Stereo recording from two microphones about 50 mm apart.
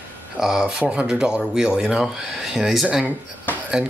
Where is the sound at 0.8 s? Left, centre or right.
Right.